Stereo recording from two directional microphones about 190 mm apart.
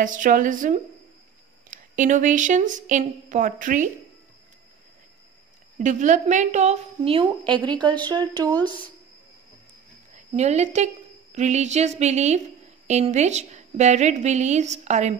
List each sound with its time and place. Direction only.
0.0 s a woman's voice: 45° right (ahead or behind)
5.8 s a woman's voice: 40° right (ahead or behind); by 8.9 s 25° right (ahead or behind)
10.1 s a woman's voice: 35° right (ahead or behind)